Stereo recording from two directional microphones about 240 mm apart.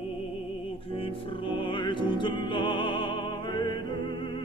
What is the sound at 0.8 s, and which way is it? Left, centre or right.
Music, left.